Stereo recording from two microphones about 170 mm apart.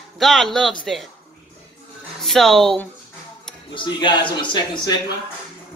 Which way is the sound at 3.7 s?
25° left (ahead or behind).